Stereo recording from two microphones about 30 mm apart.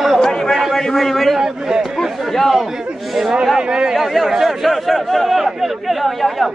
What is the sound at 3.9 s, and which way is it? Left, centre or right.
A man's voice, centre.